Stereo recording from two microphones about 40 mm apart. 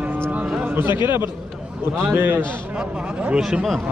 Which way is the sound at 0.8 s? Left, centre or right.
Right.